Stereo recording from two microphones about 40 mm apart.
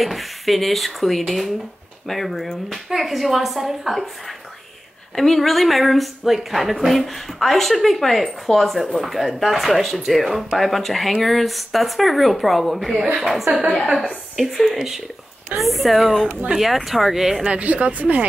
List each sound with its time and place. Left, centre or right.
0.0 s a woman's voice: centre
14.5 s speech: centre
17.5 s speech: right